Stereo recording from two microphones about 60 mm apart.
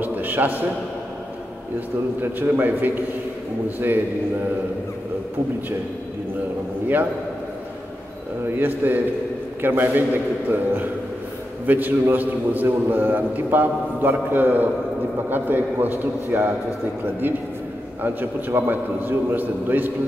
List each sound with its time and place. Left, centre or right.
0.0 s a man's voice: right
2.4 s a man's voice: right
8.5 s a man's voice: right